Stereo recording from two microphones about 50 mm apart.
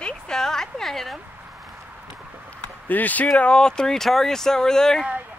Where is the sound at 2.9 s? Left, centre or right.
Left.